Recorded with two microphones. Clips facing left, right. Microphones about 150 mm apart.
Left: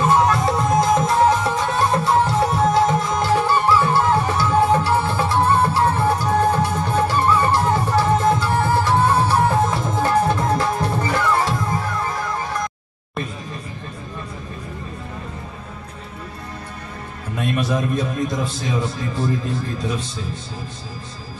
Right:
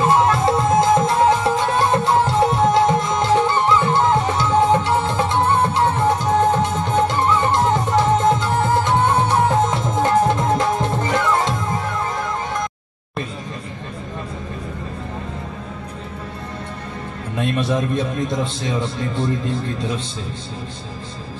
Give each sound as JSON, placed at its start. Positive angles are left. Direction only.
{"t": 0.0, "sound": "music", "side_deg": -25}
{"t": 17.4, "sound": "music", "side_deg": -25}
{"t": 18.6, "sound": "speech", "side_deg": -25}